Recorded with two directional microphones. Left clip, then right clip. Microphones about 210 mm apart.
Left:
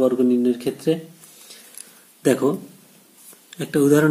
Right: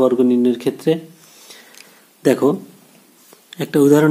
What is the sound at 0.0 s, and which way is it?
Speech, 35° right (ahead or behind).